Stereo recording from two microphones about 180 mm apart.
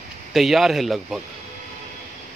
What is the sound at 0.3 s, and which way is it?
Speech, centre (ahead or behind).